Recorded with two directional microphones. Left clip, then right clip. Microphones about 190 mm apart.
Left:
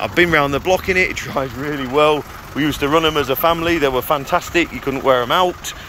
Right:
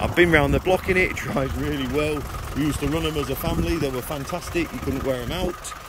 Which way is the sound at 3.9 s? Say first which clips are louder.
Left 12 dB; 50° left (ahead or behind).